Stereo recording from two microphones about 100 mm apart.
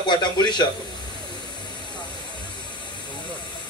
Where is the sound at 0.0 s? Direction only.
50° left (ahead or behind).